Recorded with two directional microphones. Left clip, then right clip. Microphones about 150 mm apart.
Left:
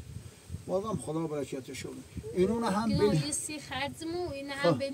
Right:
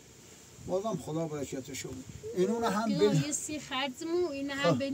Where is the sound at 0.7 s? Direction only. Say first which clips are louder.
Even; 10° right (ahead or behind).